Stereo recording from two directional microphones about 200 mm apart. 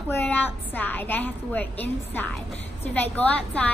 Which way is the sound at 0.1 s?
10° left (ahead or behind).